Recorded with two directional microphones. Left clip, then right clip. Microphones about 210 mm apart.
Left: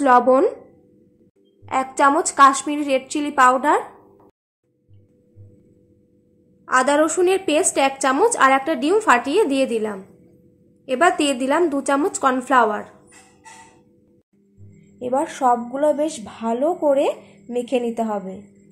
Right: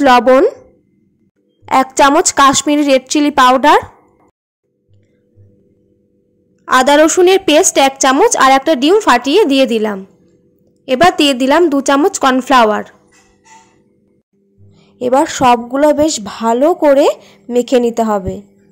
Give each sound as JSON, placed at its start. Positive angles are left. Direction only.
{"t": 0.3, "sound": "a woman's voice", "side_deg": -30}
{"t": 1.7, "sound": "a woman's voice", "side_deg": -40}
{"t": 6.6, "sound": "a woman's voice", "side_deg": -40}
{"t": 15.0, "sound": "a woman's voice", "side_deg": -50}